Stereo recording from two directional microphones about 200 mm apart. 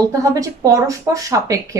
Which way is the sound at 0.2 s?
15° right (ahead or behind).